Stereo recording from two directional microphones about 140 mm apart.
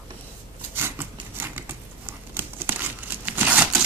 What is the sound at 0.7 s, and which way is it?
Scissors, 15° right (ahead or behind).